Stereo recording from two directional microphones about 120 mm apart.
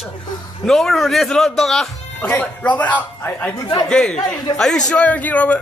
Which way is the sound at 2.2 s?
15° left (ahead or behind).